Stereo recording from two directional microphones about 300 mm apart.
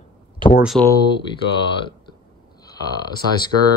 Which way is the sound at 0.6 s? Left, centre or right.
Centre.